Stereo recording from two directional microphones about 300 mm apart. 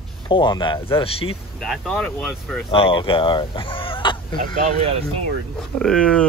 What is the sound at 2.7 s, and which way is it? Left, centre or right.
Speech, centre.